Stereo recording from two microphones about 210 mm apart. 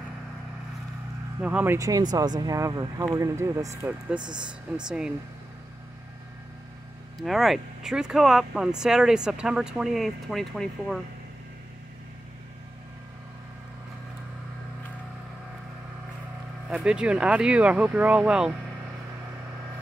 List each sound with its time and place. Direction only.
1.4 s speech: 5° right (ahead or behind)
4.7 s speech: 5° right (ahead or behind)
7.2 s speech: centre (ahead or behind)
16.7 s speech: 5° right (ahead or behind)